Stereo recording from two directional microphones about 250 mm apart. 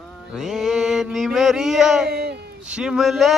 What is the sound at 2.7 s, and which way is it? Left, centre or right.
Speech, centre.